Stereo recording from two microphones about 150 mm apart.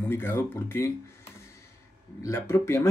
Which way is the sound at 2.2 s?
20° left (ahead or behind).